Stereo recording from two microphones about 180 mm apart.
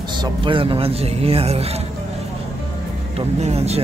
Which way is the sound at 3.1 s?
35° right (ahead or behind).